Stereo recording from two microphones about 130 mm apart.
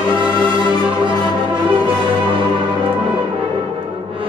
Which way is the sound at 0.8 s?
40° right (ahead or behind).